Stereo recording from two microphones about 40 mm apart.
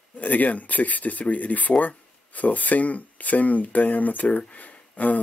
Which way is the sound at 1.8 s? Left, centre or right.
Left.